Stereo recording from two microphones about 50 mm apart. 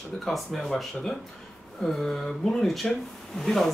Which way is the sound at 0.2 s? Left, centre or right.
Centre.